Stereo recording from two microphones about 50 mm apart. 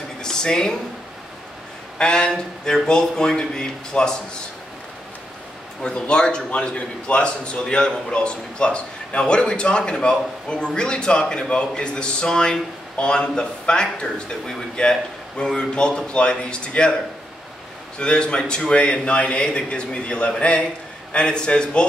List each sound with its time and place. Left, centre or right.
0.2 s a sound: centre
2.0 s speech: centre
5.8 s a man's voice: centre
17.9 s a man's voice: centre